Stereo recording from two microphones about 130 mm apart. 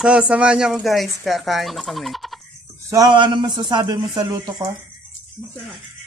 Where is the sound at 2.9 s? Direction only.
35° right (ahead or behind).